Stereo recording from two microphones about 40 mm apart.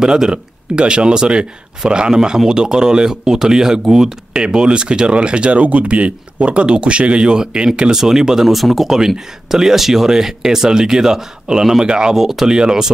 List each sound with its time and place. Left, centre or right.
0.0 s speech: centre